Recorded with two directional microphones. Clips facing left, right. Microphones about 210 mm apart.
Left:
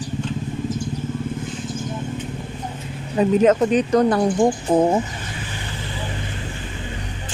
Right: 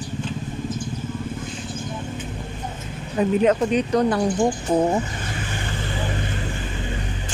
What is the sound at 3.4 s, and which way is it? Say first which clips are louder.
Speech: left 3 dB; 45° left (ahead or behind).